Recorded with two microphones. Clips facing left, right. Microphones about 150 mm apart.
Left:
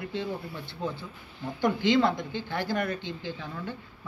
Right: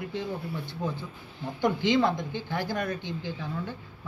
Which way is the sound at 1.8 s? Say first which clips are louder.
Left 2 dB; 20° right (ahead or behind).